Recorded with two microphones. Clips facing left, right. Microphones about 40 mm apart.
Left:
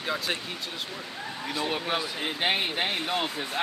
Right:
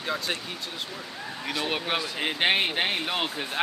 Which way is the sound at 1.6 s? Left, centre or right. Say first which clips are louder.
Even; right.